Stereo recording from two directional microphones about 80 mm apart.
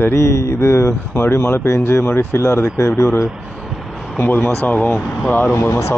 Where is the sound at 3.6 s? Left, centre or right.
Centre.